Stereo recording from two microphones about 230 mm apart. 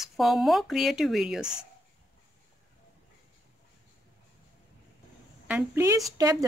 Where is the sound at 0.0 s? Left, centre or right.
Centre.